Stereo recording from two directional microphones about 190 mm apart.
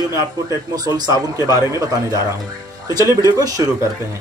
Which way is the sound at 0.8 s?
20° right (ahead or behind).